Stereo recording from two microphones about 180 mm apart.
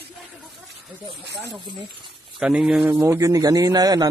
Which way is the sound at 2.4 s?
5° right (ahead or behind).